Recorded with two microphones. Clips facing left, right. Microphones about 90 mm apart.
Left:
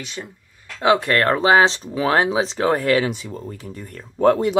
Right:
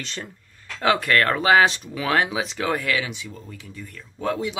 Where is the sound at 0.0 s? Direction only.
10° left (ahead or behind).